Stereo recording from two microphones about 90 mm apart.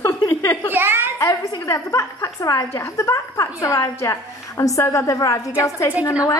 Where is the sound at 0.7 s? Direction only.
25° right (ahead or behind).